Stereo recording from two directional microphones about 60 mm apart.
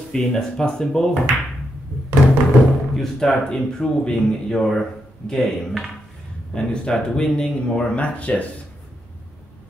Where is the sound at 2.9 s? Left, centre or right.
Centre; by 8.5 s left.